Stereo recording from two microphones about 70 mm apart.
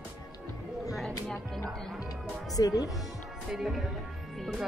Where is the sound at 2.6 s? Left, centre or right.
Left.